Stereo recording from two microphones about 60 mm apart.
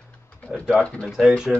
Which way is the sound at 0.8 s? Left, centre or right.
Centre.